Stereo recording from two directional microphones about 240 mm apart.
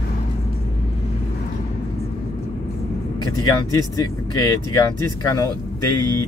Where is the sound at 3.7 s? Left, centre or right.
Centre.